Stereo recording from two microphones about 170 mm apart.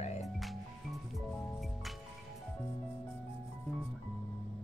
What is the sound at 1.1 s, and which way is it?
Music, centre (ahead or behind).